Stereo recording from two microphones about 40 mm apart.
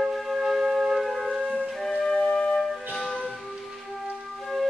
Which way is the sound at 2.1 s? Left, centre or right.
Centre.